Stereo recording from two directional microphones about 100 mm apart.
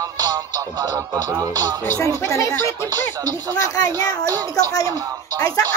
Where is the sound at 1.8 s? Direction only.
25° left (ahead or behind).